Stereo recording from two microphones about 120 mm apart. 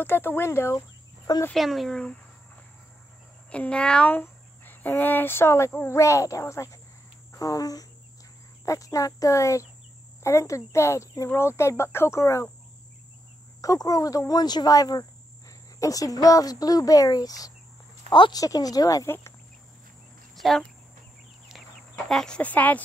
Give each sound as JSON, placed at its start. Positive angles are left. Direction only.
{"t": 0.0, "sound": "speech", "side_deg": 15}
{"t": 1.5, "sound": "speech", "side_deg": 0}
{"t": 3.4, "sound": "speech", "side_deg": 10}
{"t": 7.3, "sound": "cricket", "side_deg": 30}
{"t": 8.6, "sound": "speech", "side_deg": 30}
{"t": 13.6, "sound": "speech", "side_deg": 30}
{"t": 20.3, "sound": "cricket", "side_deg": 0}
{"t": 21.9, "sound": "speech", "side_deg": 5}